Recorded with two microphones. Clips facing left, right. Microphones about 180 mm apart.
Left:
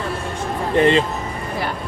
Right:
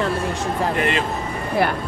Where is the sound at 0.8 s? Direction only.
30° left (ahead or behind).